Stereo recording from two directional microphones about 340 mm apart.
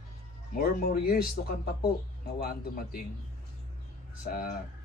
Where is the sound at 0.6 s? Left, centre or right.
Left.